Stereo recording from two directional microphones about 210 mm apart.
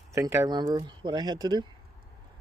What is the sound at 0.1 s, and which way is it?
Speech, 15° right (ahead or behind).